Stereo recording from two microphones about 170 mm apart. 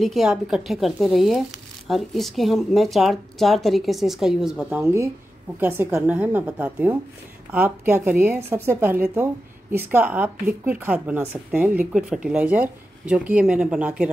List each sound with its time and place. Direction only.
0.0 s speech: centre (ahead or behind)
4.8 s a woman's voice: 20° right (ahead or behind)